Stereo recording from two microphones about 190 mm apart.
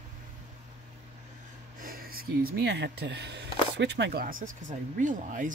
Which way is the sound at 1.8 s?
50° right (ahead or behind).